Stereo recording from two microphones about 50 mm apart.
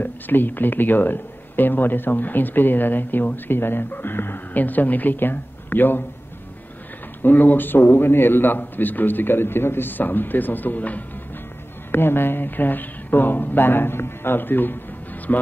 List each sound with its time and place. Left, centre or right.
0.0 s speech: left
7.2 s speech: left
11.9 s speech: left